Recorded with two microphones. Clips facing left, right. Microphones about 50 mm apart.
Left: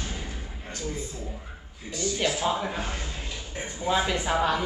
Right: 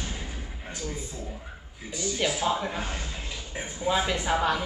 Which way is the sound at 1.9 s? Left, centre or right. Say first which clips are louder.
Left 2 dB; centre.